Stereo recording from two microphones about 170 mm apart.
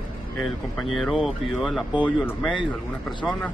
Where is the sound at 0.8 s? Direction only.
Centre (ahead or behind).